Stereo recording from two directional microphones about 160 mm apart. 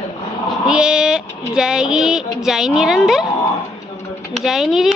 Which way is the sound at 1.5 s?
5° right (ahead or behind).